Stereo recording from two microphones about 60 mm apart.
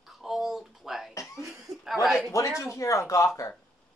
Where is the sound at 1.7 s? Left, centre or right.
Right.